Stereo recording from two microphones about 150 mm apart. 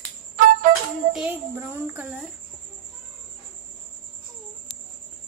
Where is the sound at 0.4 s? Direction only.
65° right (ahead or behind).